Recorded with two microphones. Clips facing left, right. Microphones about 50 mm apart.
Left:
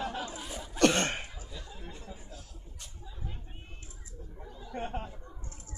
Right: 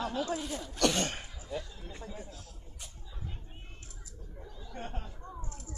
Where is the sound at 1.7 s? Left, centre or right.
Left.